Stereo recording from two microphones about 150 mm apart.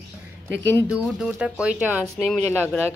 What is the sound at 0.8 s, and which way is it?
Speech, 5° right (ahead or behind).